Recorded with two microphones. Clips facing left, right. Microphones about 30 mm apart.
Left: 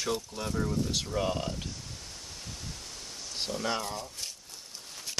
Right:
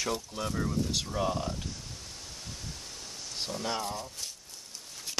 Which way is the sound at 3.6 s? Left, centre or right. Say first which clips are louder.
Left 1 dB; centre.